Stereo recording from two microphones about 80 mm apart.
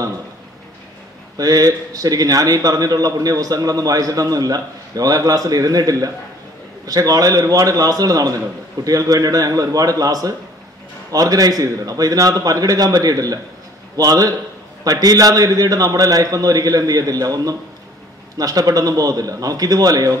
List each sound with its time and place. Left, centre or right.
1.4 s a man's voice: right